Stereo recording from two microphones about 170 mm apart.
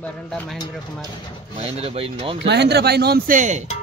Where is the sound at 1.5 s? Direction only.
35° right (ahead or behind).